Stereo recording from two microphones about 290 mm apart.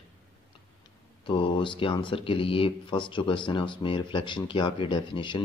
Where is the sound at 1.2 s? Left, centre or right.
Centre.